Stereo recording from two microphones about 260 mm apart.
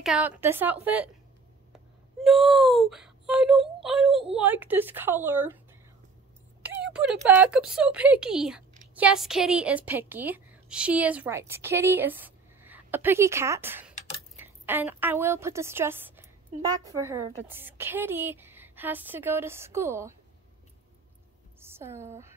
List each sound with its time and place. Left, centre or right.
0.0 s a woman's voice: centre
6.6 s a sound: centre
7.2 s a woman's voice: centre
13.9 s a sound: left
14.4 s a woman's voice: centre
21.5 s a woman's voice: centre